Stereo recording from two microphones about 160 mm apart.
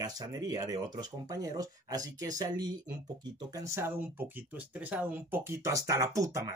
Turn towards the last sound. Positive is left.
turn(degrees=-20)  # may be behind; listen again after turning